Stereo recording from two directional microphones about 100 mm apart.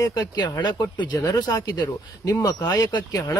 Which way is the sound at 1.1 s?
35° left (ahead or behind).